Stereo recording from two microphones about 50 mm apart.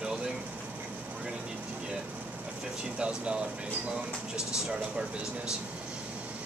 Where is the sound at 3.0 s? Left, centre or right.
Centre.